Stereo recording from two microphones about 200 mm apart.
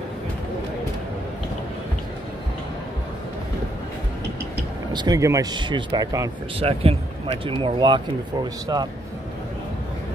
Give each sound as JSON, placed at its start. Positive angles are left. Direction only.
{"t": 4.9, "sound": "speech", "side_deg": -20}
{"t": 6.6, "sound": "speech", "side_deg": -30}